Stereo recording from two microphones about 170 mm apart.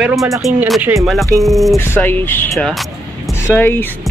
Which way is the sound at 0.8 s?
15° right (ahead or behind).